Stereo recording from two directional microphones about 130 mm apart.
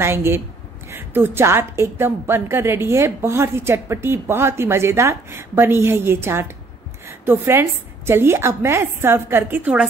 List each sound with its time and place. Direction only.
0.0 s a woman's voice: 20° right (ahead or behind)